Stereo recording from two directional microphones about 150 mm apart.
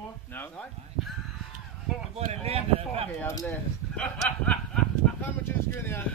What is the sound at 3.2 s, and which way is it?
Speech, 20° left (ahead or behind).